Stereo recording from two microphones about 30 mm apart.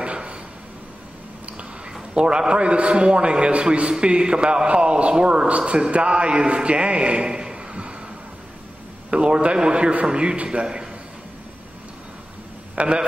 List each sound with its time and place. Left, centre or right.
0.0 s a sound: right
2.1 s a man's voice: right
4.0 s a man's voice: right
9.1 s a man's voice: right
10.6 s a man's voice: right
12.8 s a man's voice: right